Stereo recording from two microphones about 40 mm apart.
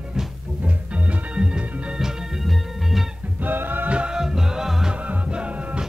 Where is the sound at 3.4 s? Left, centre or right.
Right.